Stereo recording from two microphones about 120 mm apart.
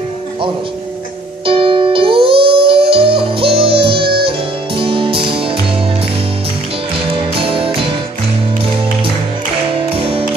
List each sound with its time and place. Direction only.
1.4 s music: 45° right (ahead or behind)
7.2 s music: 50° right (ahead or behind)
9.8 s music: 50° right (ahead or behind)